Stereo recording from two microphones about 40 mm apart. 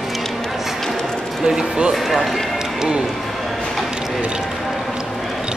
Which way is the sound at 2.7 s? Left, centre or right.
Centre.